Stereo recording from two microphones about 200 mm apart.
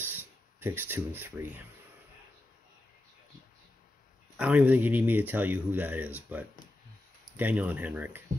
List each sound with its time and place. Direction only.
0.0 s speech: 10° right (ahead or behind)
4.4 s speech: 5° right (ahead or behind)